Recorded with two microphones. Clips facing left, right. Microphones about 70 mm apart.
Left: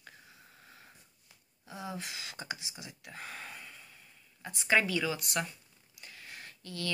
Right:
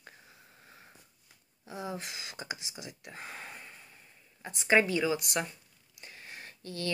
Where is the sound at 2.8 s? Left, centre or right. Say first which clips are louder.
Right 1 dB; right.